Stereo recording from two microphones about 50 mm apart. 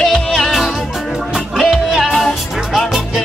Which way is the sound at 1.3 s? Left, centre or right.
Centre.